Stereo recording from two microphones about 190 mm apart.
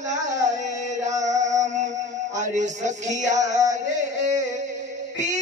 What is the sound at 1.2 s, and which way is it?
Music, 40° right (ahead or behind).